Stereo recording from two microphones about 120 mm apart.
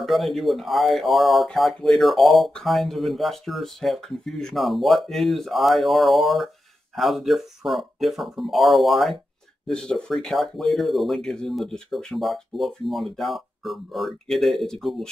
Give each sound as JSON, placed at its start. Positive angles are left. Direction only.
{"t": 0.0, "sound": "speech", "side_deg": 0}